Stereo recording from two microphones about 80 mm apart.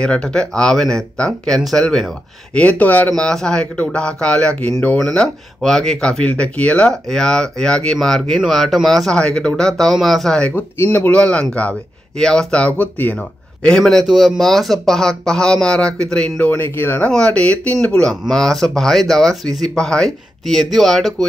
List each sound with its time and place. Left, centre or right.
0.0 s speech: centre
2.5 s speech: centre
3.1 s speech: centre
10.5 s speech: left
16.4 s speech: left
17.0 s speech: centre